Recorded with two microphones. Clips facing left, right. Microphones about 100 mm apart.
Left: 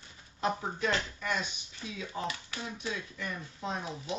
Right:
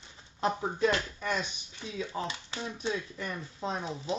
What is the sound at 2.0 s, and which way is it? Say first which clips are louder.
Speech: right 2 dB; 25° right (ahead or behind).